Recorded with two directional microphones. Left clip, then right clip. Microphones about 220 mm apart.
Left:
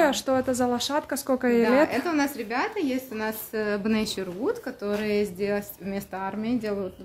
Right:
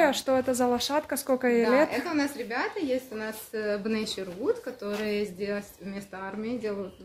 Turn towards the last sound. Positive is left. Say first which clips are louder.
# left 3 dB
turn(degrees=50)  # may be behind; listen again after turning